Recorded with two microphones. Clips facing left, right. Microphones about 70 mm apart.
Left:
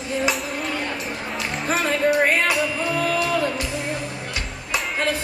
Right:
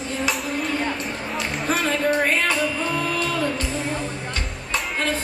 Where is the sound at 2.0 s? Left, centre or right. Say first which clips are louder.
Left 3 dB; centre.